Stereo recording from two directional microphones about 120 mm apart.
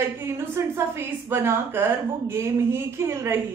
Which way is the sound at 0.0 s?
20° right (ahead or behind).